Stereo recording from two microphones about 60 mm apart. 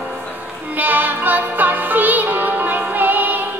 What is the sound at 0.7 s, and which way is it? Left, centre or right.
Music, right.